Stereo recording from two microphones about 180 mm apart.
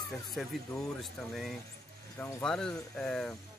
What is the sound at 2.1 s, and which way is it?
Speech, 15° left (ahead or behind).